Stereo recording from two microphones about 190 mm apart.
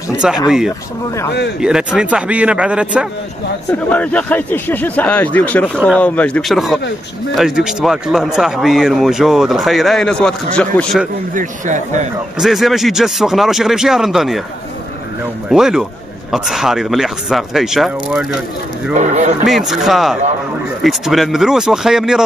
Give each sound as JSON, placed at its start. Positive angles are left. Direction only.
{"t": 0.5, "sound": "speech", "side_deg": 0}
{"t": 3.9, "sound": "speech", "side_deg": 5}
{"t": 11.3, "sound": "speech", "side_deg": -40}
{"t": 12.4, "sound": "speech", "side_deg": 0}
{"t": 15.5, "sound": "speech", "side_deg": -5}
{"t": 18.9, "sound": "speech", "side_deg": -35}
{"t": 19.4, "sound": "speech", "side_deg": 0}